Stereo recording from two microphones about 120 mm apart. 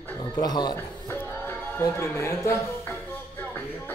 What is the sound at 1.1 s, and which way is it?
Music, 20° left (ahead or behind).